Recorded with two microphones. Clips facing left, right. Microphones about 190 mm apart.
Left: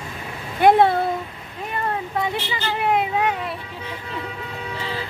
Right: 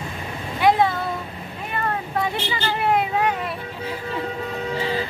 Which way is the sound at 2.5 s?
20° left (ahead or behind).